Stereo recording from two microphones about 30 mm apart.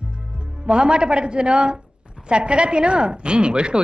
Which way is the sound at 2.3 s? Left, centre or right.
Right.